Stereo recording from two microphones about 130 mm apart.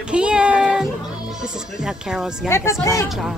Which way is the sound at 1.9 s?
5° right (ahead or behind).